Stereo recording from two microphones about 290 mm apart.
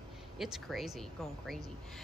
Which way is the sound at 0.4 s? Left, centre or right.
Centre.